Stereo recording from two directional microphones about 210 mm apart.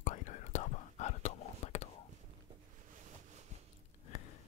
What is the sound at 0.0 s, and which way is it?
Whispering, 35° left (ahead or behind).